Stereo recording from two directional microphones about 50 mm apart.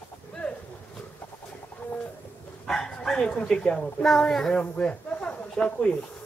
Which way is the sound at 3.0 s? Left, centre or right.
Centre.